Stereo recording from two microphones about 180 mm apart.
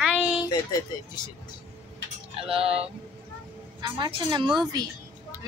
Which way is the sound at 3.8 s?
25° right (ahead or behind).